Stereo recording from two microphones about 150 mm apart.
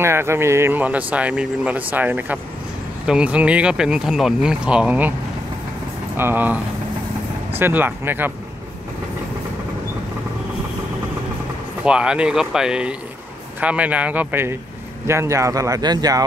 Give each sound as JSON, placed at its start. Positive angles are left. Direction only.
{"t": 0.0, "sound": "speech", "side_deg": -15}
{"t": 6.1, "sound": "speech", "side_deg": -15}
{"t": 11.8, "sound": "speech", "side_deg": -5}